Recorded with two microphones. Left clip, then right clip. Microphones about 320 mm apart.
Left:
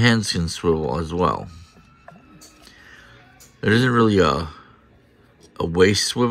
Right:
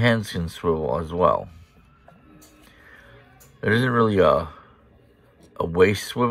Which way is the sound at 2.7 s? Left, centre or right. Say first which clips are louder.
Left 1 dB; centre.